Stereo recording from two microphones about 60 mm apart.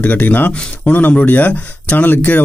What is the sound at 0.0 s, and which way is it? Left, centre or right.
Speech, left.